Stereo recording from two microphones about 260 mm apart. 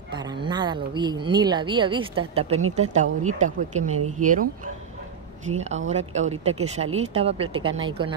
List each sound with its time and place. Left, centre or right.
0.1 s speech: centre
5.5 s speech: right